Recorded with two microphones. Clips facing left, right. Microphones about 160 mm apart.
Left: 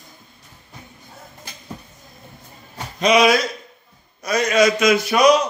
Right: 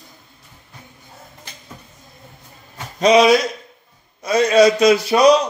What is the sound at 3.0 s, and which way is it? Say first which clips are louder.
A man's voice: right 3 dB; 30° right (ahead or behind).